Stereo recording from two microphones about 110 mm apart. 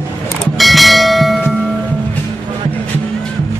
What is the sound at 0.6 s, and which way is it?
Bell, centre (ahead or behind).